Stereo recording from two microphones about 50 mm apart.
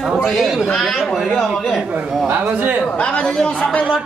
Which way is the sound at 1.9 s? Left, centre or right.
Right.